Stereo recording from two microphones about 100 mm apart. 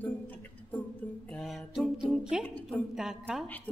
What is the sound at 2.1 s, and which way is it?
Speech, 5° right (ahead or behind).